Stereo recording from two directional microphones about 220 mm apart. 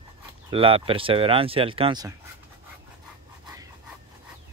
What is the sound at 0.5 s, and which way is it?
Speech, 25° right (ahead or behind).